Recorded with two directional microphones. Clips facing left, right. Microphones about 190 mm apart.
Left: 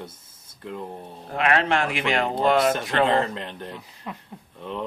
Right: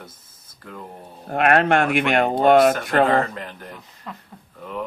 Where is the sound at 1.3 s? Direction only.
55° right (ahead or behind).